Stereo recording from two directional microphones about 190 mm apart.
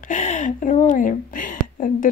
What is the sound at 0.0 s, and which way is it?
A woman's voice, 40° left (ahead or behind).